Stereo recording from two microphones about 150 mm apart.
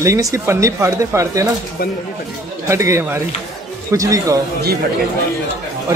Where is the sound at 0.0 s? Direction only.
20° right (ahead or behind).